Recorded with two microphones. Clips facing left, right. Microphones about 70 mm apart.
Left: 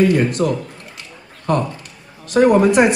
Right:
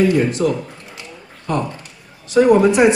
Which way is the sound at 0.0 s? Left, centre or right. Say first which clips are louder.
Even; left.